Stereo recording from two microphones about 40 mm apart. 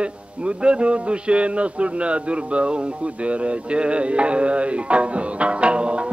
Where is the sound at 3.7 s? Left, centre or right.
Right.